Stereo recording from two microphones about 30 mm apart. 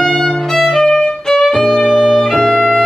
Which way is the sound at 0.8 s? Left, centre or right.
Centre.